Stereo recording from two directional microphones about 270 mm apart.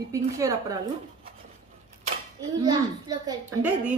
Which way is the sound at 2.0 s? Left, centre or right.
Centre.